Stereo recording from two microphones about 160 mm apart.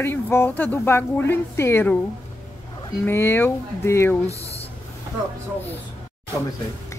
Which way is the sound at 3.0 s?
15° left (ahead or behind).